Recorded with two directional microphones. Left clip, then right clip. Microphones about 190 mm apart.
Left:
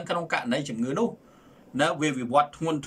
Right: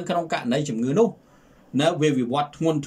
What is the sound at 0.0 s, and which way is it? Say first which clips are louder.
A man's voice: right 3 dB; 20° right (ahead or behind).